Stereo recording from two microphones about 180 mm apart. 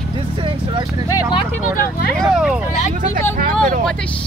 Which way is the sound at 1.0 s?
20° left (ahead or behind).